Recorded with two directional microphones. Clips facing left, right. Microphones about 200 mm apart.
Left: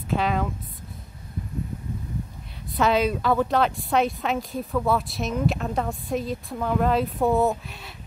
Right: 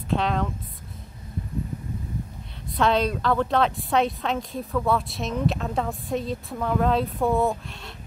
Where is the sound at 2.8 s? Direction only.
5° left (ahead or behind).